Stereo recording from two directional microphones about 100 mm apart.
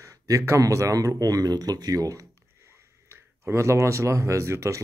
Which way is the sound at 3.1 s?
25° right (ahead or behind).